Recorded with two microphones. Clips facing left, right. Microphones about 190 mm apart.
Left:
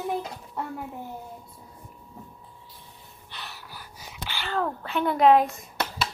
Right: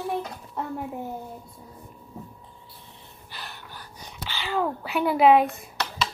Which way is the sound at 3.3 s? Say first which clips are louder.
Right 1 dB; centre (ahead or behind).